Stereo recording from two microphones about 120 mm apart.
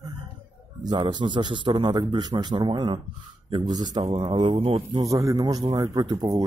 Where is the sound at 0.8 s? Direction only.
40° right (ahead or behind).